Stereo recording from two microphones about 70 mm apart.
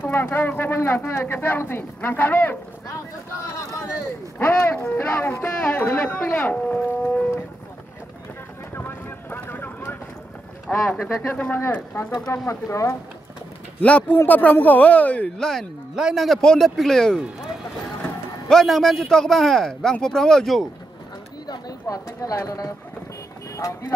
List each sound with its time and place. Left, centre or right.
0.0 s speech: left
4.4 s speech: left
5.1 s speech: left
5.4 s speech: left
8.7 s boat: left
10.7 s speech: centre
11.5 s speech: left
12.3 s speech: left
13.7 s speech: left
15.2 s speech: centre
16.0 s a man's voice: centre
18.5 s a man's voice: centre
21.5 s speech: left